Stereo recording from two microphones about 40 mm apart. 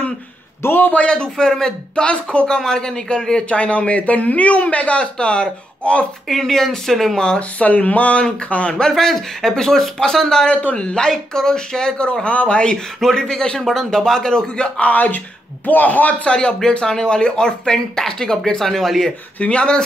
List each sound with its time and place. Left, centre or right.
0.6 s a man's voice: left
1.0 s speech: left
2.5 s speech: centre
6.2 s speech: centre
7.2 s speech: left
7.5 s speech: left
8.8 s speech: centre
10.5 s speech: left
13.0 s speech: centre
14.8 s speech: left
16.3 s speech: left
19.4 s speech: left